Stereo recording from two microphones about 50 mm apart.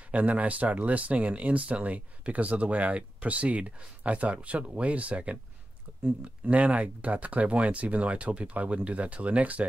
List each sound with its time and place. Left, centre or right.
0.1 s speech: right
6.4 s speech: right